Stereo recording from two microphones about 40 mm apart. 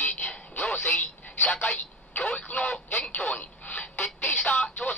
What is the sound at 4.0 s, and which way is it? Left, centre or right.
Music, left.